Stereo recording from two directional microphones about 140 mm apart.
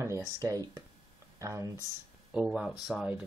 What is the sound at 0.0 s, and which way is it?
Speech, 20° right (ahead or behind).